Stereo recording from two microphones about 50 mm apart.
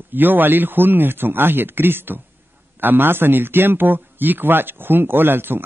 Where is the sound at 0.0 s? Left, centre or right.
Right.